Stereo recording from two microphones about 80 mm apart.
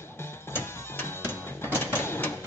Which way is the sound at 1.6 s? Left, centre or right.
Left.